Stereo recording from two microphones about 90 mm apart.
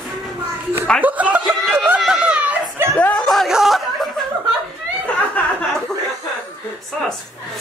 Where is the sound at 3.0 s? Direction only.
15° left (ahead or behind).